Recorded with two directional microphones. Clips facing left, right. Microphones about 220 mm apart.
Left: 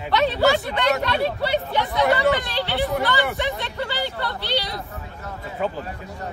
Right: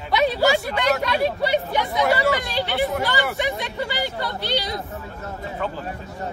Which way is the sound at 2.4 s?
15° right (ahead or behind).